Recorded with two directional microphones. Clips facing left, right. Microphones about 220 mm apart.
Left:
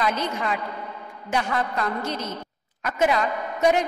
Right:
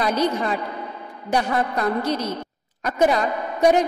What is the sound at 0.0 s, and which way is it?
A woman's voice, 35° right (ahead or behind).